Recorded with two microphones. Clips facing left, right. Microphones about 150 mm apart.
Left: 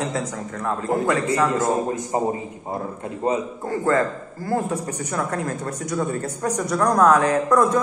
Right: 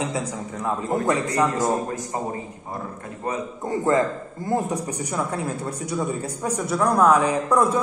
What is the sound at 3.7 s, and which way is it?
Speech, 20° right (ahead or behind).